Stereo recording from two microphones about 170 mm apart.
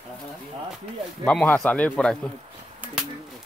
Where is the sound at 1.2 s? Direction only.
10° left (ahead or behind).